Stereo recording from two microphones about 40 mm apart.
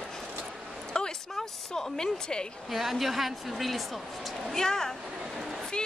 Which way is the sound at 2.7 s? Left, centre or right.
Centre.